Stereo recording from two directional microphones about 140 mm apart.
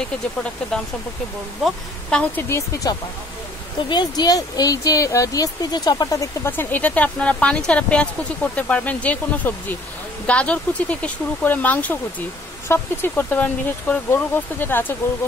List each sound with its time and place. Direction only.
1.6 s speech: 5° left (ahead or behind)
2.4 s speech: 20° left (ahead or behind)